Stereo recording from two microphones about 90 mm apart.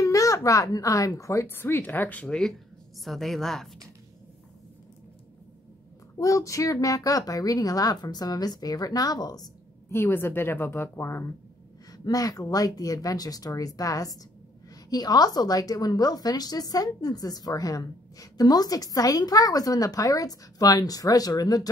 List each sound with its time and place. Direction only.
0.0 s a woman's voice: 40° left (ahead or behind); by 3.7 s 5° left (ahead or behind)
6.1 s a woman's voice: 35° left (ahead or behind)
9.8 s a woman's voice: 25° left (ahead or behind)
12.0 s a woman's voice: 45° left (ahead or behind)